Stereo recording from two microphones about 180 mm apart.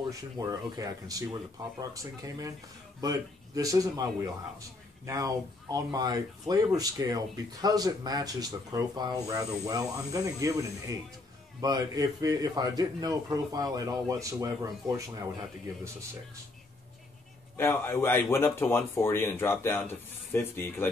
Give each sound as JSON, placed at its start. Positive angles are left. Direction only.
{"t": 0.1, "sound": "a man's voice", "side_deg": -20}
{"t": 17.6, "sound": "speech", "side_deg": 15}